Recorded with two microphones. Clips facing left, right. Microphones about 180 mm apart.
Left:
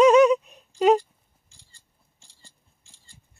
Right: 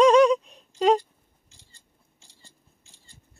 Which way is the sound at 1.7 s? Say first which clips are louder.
Right 3 dB; 20° right (ahead or behind).